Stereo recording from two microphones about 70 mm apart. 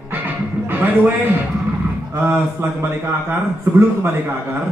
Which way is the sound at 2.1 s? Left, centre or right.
Right.